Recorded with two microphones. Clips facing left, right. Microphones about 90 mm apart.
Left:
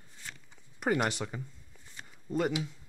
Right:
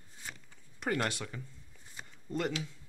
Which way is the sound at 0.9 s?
20° left (ahead or behind).